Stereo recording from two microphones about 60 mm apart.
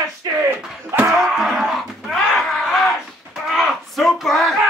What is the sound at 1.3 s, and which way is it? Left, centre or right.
Music, centre.